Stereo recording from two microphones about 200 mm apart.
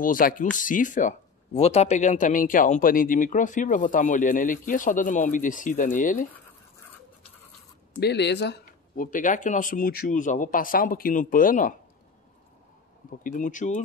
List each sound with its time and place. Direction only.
0.0 s speech: 45° left (ahead or behind)
8.0 s speech: 60° left (ahead or behind); by 11.7 s 40° left (ahead or behind)
13.2 s speech: 40° left (ahead or behind)